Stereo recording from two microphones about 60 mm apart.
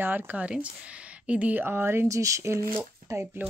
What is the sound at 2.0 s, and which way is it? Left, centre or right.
Speech, right.